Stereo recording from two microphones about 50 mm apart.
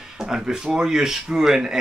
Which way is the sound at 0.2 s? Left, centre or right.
Centre.